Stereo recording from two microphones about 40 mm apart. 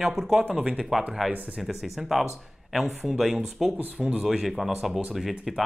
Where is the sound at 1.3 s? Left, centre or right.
Right.